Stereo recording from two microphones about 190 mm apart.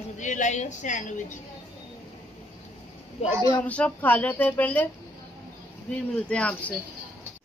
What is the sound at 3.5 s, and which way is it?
Speech, 5° left (ahead or behind).